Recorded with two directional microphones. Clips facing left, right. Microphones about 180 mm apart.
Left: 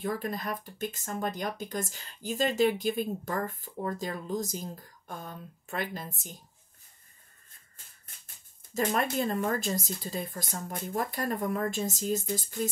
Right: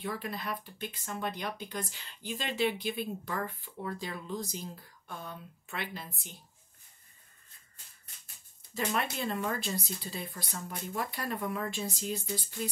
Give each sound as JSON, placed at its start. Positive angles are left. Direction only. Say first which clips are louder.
{"t": 0.0, "sound": "speech", "louder": "left 4 dB", "side_deg": 45}
{"t": 8.7, "sound": "speech", "louder": "left 5 dB", "side_deg": 45}